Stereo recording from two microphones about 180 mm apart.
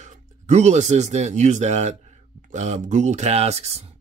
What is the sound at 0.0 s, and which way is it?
Speech, 40° right (ahead or behind).